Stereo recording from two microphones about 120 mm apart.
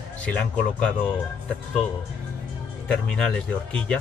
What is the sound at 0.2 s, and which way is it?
Speech, 10° left (ahead or behind).